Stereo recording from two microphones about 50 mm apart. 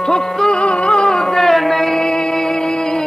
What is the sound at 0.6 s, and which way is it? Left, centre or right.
Music, left.